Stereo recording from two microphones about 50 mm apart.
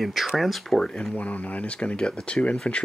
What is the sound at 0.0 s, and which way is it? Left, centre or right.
Speech, centre.